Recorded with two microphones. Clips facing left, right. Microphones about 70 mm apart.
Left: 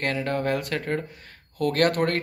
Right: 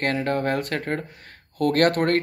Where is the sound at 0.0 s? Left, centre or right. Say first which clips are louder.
Right 2 dB; right.